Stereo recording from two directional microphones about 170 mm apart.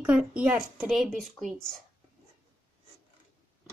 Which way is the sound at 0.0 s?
5° right (ahead or behind).